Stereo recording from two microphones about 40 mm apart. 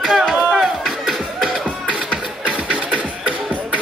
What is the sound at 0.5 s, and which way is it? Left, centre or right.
Music, centre.